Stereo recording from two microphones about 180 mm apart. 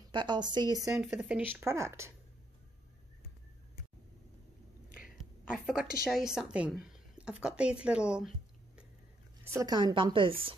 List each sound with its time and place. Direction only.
0.1 s a woman's voice: 25° right (ahead or behind)
0.8 s speech: 5° right (ahead or behind)
1.6 s speech: 15° right (ahead or behind)
4.8 s whispering: 50° left (ahead or behind)
5.1 s a woman's voice: centre (ahead or behind)
9.4 s a woman's voice: 15° right (ahead or behind)